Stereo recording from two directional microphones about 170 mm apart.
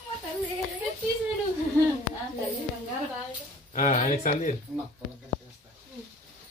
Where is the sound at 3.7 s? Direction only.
45° left (ahead or behind).